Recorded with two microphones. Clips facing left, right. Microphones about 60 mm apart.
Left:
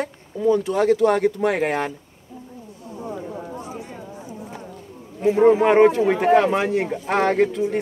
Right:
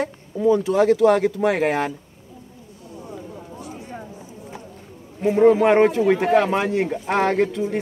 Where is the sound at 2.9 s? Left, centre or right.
Left.